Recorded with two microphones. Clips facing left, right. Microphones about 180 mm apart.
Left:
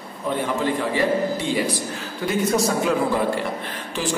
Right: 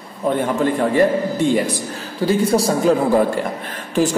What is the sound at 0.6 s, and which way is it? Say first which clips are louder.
Speech: right 6 dB; 50° right (ahead or behind).